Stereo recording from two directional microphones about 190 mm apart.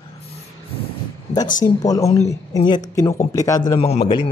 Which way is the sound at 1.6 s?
20° left (ahead or behind).